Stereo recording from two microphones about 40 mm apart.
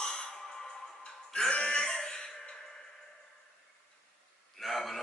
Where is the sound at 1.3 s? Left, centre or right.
Left.